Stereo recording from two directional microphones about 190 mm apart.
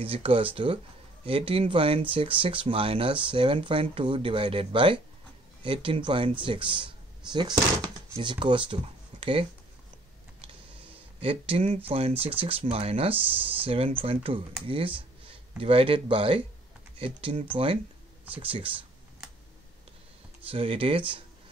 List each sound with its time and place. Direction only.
0.0 s speech: 30° right (ahead or behind)
11.1 s speech: 30° right (ahead or behind)
20.4 s speech: 30° right (ahead or behind)